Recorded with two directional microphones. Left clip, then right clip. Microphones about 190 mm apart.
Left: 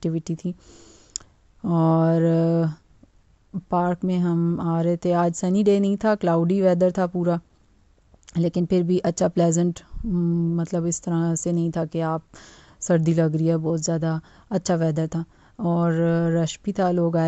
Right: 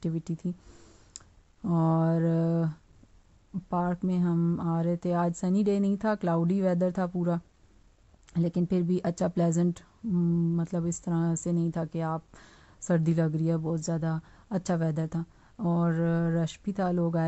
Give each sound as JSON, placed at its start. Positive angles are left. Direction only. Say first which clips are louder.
{"t": 0.0, "sound": "a woman's voice", "louder": "left 7 dB", "side_deg": 35}